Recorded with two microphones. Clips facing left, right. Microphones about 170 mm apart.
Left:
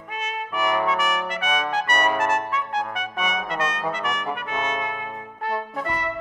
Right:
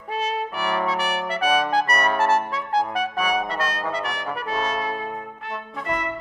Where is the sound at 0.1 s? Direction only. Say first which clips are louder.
Right 4 dB; 35° right (ahead or behind).